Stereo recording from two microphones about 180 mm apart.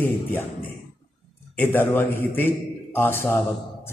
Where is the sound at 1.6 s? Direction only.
10° left (ahead or behind).